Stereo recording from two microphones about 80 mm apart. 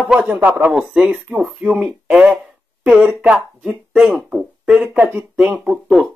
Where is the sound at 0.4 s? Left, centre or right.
Right.